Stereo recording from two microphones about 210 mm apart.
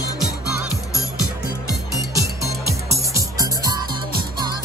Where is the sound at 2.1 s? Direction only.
15° right (ahead or behind).